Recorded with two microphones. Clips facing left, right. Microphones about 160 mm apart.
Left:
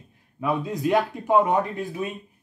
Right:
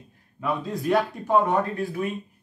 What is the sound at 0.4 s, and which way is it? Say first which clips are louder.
A man's voice: left 3 dB; 15° left (ahead or behind).